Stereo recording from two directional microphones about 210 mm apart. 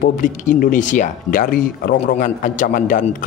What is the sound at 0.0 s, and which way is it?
Speech, 40° left (ahead or behind).